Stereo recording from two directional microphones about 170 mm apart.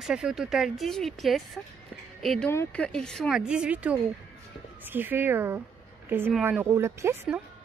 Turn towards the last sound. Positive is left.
turn(degrees=-15)  # may be behind; listen again after turning